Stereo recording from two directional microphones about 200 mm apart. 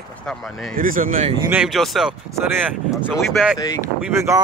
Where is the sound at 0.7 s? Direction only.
45° right (ahead or behind).